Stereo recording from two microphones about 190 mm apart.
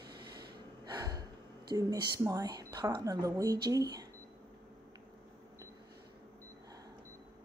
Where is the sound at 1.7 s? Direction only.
20° right (ahead or behind).